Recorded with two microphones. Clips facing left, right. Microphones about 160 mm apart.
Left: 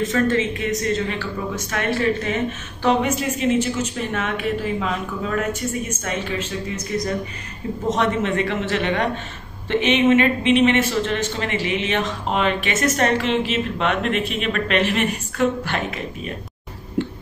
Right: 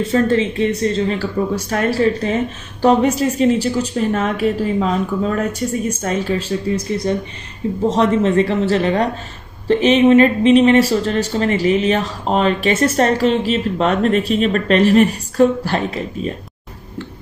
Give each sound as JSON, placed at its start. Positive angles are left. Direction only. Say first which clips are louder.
{"t": 0.0, "sound": "speech", "louder": "right 4 dB", "side_deg": -30}